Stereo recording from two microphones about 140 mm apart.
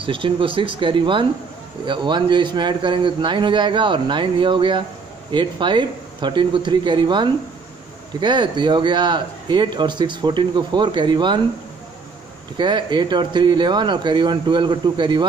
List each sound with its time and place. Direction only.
0.0 s speech: 40° right (ahead or behind)
12.5 s speech: 35° right (ahead or behind)